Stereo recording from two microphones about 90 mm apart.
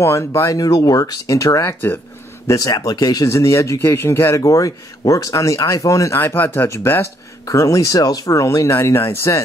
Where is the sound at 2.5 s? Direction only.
40° left (ahead or behind).